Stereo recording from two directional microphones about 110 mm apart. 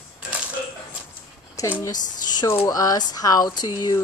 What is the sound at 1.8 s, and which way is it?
Speech, 40° left (ahead or behind).